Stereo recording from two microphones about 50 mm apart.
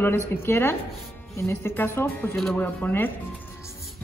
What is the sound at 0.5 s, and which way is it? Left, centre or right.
Speech, left.